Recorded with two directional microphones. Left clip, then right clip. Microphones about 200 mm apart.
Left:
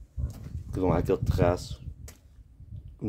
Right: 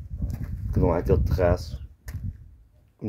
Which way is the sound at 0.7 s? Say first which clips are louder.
Right 3 dB; 5° right (ahead or behind).